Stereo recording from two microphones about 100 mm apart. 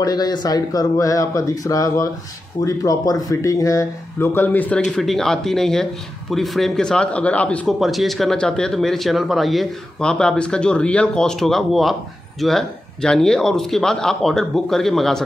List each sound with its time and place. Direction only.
0.0 s speech: 40° left (ahead or behind); by 7.6 s 15° left (ahead or behind)
7.6 s speech: centre (ahead or behind)